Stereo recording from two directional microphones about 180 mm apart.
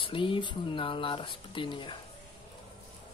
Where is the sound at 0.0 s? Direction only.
30° left (ahead or behind).